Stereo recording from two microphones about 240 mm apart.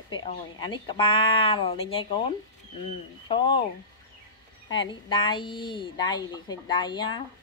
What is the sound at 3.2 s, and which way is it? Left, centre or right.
Speech, left.